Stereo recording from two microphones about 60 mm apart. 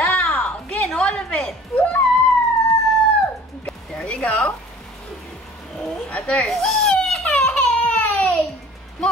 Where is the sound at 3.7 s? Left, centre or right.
Centre.